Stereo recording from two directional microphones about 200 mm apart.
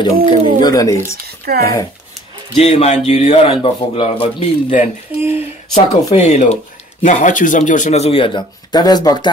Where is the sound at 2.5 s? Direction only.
35° left (ahead or behind).